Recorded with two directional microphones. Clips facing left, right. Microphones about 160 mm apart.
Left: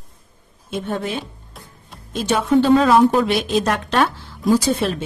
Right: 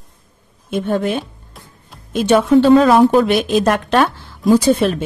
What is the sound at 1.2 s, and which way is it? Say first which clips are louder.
Music: right 1 dB; centre (ahead or behind).